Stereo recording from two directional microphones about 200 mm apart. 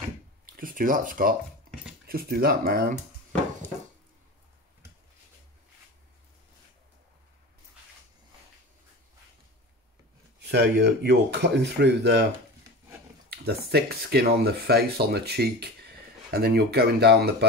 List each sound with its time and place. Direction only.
0.6 s speech: 45° right (ahead or behind)
10.4 s speech: 55° right (ahead or behind)
13.3 s speech: 55° right (ahead or behind)